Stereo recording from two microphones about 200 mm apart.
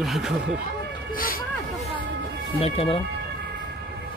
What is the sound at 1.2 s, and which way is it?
Speech, 45° left (ahead or behind).